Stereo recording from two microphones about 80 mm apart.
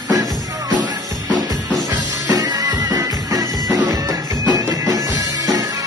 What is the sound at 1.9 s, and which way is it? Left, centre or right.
Music, right.